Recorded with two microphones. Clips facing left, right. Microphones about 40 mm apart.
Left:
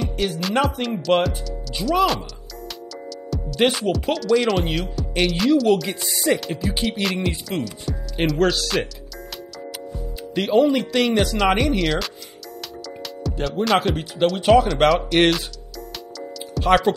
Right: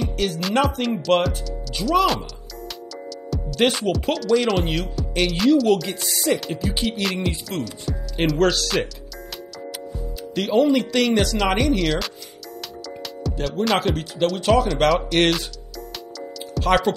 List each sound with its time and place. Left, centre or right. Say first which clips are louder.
0.0 s speech: even; centre
3.3 s speech: even; centre
10.3 s speech: left 1 dB; centre
13.2 s music: even; centre
13.7 s speech: left 2 dB; centre
14.2 s speech: left 3 dB; centre
16.5 s speech: left 2 dB; centre